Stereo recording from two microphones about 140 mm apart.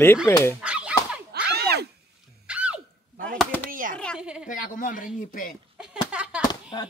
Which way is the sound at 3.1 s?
75° right (ahead or behind).